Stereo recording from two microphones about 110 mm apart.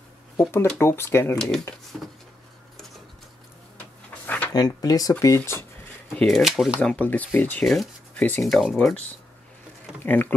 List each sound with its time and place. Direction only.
0.4 s speech: 25° left (ahead or behind)
4.1 s drawer open or close: 15° left (ahead or behind)
4.6 s speech: 35° left (ahead or behind)
5.2 s speech: 25° left (ahead or behind)
6.1 s speech: centre (ahead or behind)
6.8 s speech: 15° left (ahead or behind)
7.6 s speech: centre (ahead or behind)
10.0 s speech: 15° left (ahead or behind)